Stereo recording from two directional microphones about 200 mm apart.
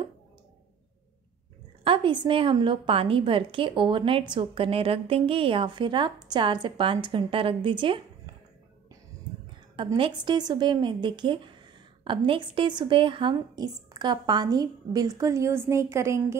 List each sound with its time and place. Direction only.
1.9 s a woman's voice: 25° right (ahead or behind)
9.8 s a woman's voice: 25° right (ahead or behind)